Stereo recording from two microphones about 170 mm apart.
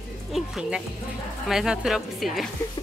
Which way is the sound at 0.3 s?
5° right (ahead or behind).